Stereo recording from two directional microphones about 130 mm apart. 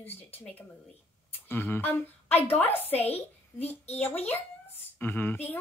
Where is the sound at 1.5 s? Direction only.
15° left (ahead or behind).